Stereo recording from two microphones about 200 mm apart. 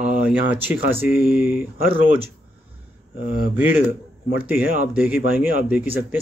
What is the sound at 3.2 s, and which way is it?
Speech, 45° right (ahead or behind).